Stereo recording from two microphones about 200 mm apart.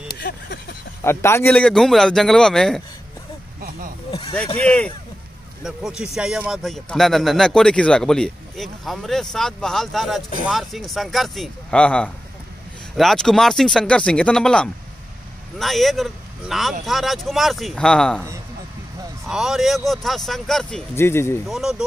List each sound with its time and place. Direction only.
0.1 s a sound: 55° left (ahead or behind)
1.0 s speech: 10° left (ahead or behind)
4.6 s speech: 5° left (ahead or behind)
19.2 s speech: centre (ahead or behind)
20.9 s speech: 10° left (ahead or behind)
21.5 s speech: centre (ahead or behind)